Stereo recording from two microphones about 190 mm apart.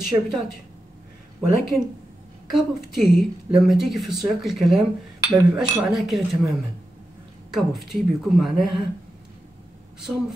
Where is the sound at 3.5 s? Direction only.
Centre (ahead or behind).